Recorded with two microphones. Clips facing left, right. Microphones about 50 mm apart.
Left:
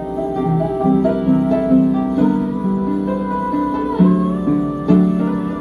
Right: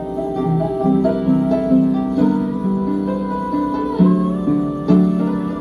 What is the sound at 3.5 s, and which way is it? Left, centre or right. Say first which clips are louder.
Music: even; centre.